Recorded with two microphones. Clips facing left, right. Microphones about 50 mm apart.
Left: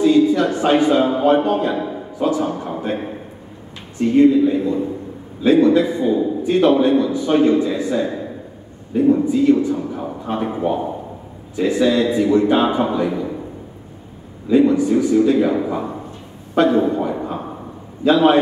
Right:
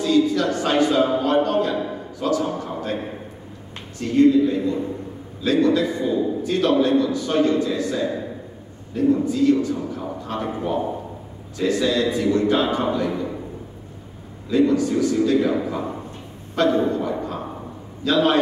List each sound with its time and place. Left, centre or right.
0.0 s a man's voice: centre
4.0 s a man's voice: centre
14.5 s a man's voice: centre